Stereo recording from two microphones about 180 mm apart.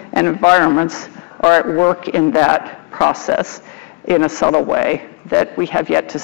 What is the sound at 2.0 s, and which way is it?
A man's voice, 10° left (ahead or behind).